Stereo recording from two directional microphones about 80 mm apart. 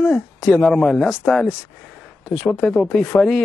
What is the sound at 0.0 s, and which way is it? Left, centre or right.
Speech, centre.